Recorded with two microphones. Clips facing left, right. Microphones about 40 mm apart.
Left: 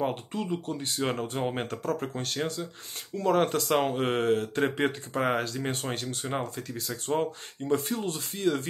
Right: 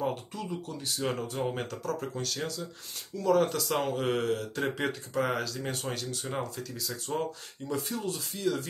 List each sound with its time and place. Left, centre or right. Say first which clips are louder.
0.0 s speech: left 3 dB; left
7.1 s speech: left 5 dB; left
7.6 s speech: left 5 dB; left